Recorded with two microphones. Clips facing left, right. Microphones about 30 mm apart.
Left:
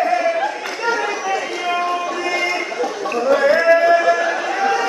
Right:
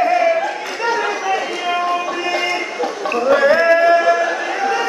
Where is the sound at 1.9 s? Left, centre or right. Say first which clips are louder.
Right 1 dB; centre.